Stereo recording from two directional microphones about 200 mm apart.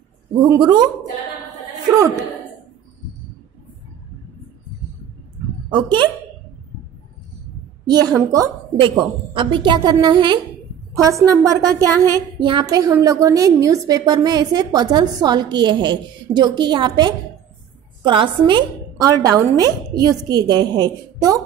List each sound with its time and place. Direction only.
0.4 s a woman's voice: 15° right (ahead or behind)
5.7 s a woman's voice: 20° right (ahead or behind)
7.8 s a woman's voice: 20° right (ahead or behind)